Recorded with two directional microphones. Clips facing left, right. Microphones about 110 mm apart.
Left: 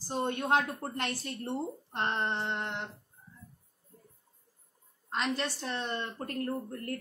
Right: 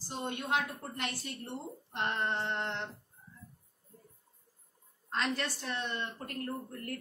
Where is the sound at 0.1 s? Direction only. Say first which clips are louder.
Left 5 dB; 40° left (ahead or behind).